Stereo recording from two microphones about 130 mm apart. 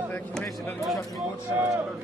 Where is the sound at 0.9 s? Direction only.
Centre (ahead or behind).